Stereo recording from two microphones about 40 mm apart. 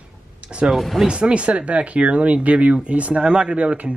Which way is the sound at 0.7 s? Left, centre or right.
Centre.